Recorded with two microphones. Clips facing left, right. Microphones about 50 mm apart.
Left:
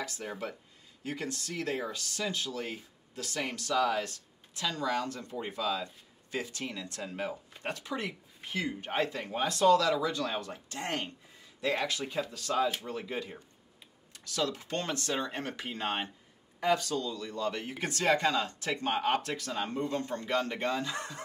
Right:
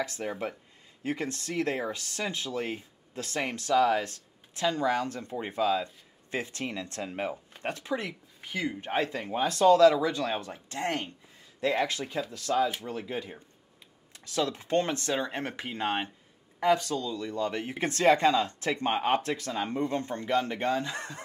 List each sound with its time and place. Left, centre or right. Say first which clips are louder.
0.0 s speech: right 5 dB; right